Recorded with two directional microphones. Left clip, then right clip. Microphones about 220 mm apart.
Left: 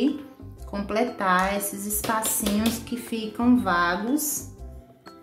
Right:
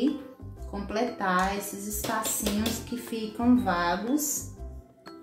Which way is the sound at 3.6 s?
15° left (ahead or behind).